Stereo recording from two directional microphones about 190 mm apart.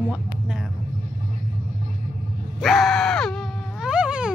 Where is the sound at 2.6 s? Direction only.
Centre (ahead or behind).